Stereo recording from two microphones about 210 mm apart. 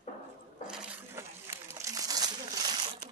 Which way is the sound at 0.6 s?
5° right (ahead or behind).